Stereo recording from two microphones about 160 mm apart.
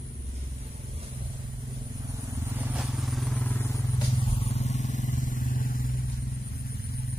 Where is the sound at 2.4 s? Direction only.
10° right (ahead or behind).